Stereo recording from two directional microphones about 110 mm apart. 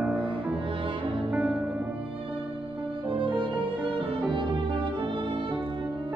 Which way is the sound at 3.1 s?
50° right (ahead or behind).